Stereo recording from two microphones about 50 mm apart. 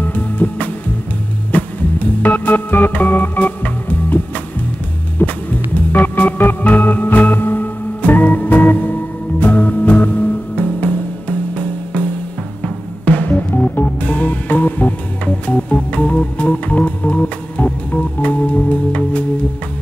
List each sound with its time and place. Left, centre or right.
0.1 s music: left
1.5 s organ: left
5.2 s music: left
5.9 s organ: left
9.4 s music: left
15.4 s organ: left